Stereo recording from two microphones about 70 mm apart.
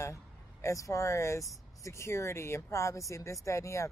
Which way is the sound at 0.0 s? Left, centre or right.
Left.